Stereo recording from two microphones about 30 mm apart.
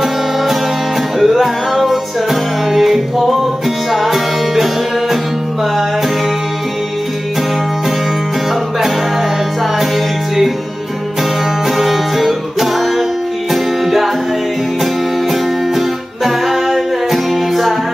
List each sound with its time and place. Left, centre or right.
1.2 s music: centre
11.8 s music: centre
16.3 s music: centre